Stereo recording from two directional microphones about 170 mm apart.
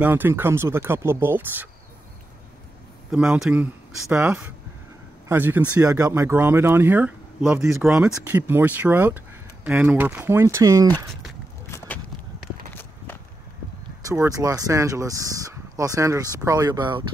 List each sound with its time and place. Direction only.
0.0 s speech: 10° right (ahead or behind)
3.1 s speech: 5° right (ahead or behind); by 10.9 s 20° right (ahead or behind)
14.1 s speech: 15° right (ahead or behind)